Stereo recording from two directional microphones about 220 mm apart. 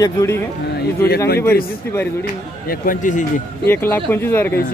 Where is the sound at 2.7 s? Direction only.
40° left (ahead or behind).